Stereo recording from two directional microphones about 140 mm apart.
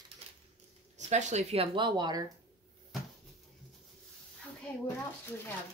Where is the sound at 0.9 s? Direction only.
55° right (ahead or behind); by 2.2 s 30° right (ahead or behind).